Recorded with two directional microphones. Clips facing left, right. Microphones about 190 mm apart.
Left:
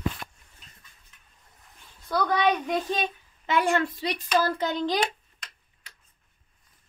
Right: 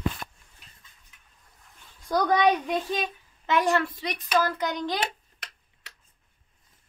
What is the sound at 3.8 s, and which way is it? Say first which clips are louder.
A child's voice: left 2 dB; 25° left (ahead or behind).